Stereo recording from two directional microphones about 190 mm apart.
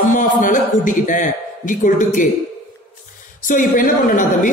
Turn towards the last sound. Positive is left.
turn(degrees=45)  # may be behind; listen again after turning